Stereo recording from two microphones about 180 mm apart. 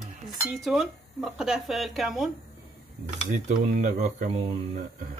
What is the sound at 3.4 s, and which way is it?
Speech, 40° right (ahead or behind).